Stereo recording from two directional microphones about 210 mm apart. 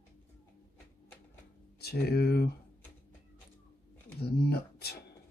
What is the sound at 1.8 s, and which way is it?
Speech, 50° left (ahead or behind).